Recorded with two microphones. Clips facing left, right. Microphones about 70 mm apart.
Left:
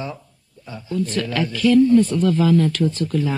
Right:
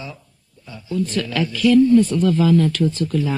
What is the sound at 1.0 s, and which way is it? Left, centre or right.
Speech, left.